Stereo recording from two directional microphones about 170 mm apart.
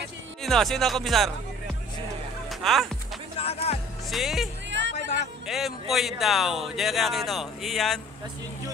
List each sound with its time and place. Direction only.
0.4 s speech: centre (ahead or behind)
2.6 s speech: centre (ahead or behind)
3.3 s music: 35° left (ahead or behind)
4.1 s speech: centre (ahead or behind)
4.6 s music: 90° right
5.5 s speech: centre (ahead or behind)